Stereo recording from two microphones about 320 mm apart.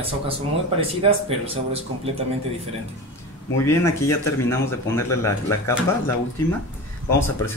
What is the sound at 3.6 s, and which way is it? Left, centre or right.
Speech, centre.